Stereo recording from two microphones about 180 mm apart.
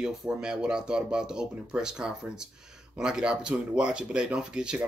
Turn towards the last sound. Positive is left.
turn(degrees=-5)  # may be behind; listen again after turning